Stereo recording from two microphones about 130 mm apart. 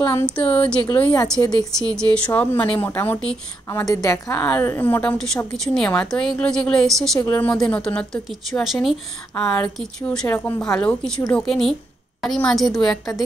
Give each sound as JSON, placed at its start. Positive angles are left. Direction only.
{"t": 0.0, "sound": "speech", "side_deg": 15}
{"t": 1.4, "sound": "speech", "side_deg": 25}
{"t": 2.0, "sound": "a woman's voice", "side_deg": 10}
{"t": 7.2, "sound": "speech", "side_deg": 20}
{"t": 7.5, "sound": "a woman's voice", "side_deg": 5}
{"t": 9.5, "sound": "a woman's voice", "side_deg": 15}